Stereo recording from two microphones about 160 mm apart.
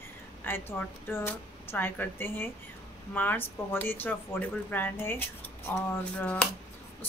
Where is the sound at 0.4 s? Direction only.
10° left (ahead or behind).